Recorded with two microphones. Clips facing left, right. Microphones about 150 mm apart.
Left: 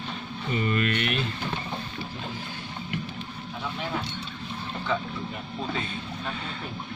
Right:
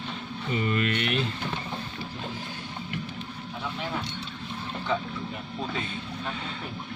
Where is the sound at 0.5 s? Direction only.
20° right (ahead or behind).